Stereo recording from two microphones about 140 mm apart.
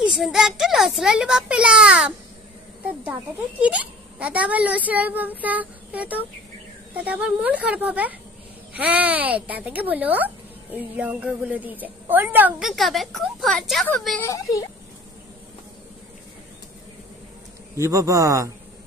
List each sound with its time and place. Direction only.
0.0 s a child's voice: 5° right (ahead or behind)
3.6 s speech: 10° right (ahead or behind)
12.6 s a child's voice: centre (ahead or behind)
14.2 s speech: 25° left (ahead or behind)
17.7 s a man's voice: 20° right (ahead or behind)